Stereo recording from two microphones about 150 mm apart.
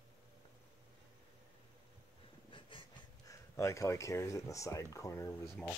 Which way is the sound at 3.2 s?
20° left (ahead or behind).